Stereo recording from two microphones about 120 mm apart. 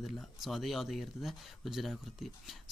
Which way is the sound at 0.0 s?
Centre (ahead or behind).